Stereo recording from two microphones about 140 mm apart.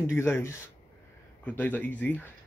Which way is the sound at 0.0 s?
15° left (ahead or behind).